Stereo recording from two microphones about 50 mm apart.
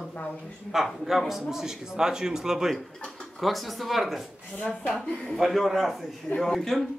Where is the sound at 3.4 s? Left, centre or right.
Centre.